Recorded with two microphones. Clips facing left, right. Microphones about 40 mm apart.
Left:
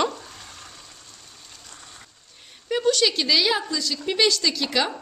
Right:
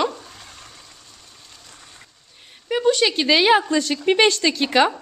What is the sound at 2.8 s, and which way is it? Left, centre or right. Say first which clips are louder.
A woman's voice: right 4 dB; right.